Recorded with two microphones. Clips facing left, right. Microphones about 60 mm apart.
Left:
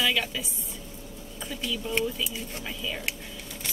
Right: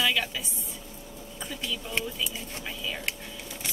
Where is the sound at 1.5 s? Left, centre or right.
Centre.